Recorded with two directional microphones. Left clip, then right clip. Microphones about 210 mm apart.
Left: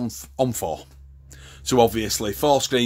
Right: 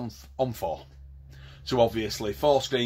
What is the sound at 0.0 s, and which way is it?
Speech, 50° left (ahead or behind).